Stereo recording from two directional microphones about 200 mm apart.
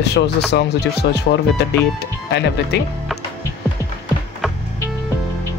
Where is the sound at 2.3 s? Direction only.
55° left (ahead or behind).